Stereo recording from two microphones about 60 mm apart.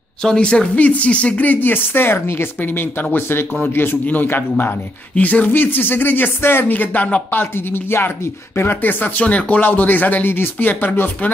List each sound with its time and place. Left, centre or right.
0.2 s speech: centre
7.2 s speech: left
9.2 s speech: left